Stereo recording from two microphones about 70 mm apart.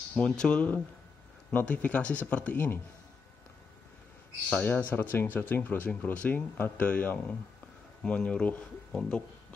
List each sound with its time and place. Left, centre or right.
0.1 s speech: centre
4.6 s speech: left